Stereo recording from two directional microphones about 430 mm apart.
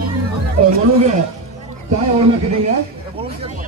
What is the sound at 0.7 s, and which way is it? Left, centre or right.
Speech, centre.